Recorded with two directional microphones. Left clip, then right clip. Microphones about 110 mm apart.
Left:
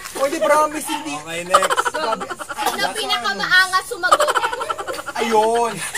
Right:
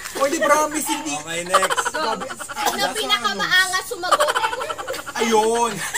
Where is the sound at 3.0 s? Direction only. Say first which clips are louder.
Left 1 dB; 40° left (ahead or behind).